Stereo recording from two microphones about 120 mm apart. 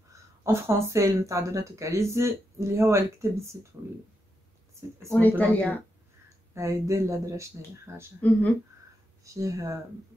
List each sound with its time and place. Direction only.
0.4 s speech: 25° right (ahead or behind)
5.1 s speech: 15° left (ahead or behind)
6.5 s speech: 25° right (ahead or behind)
9.2 s speech: 25° right (ahead or behind)